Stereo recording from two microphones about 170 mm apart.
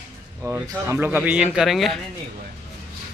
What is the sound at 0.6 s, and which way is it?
Speech, 15° right (ahead or behind).